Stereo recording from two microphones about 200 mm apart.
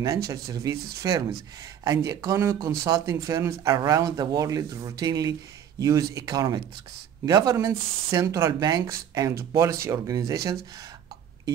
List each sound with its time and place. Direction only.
0.5 s speech: 15° right (ahead or behind)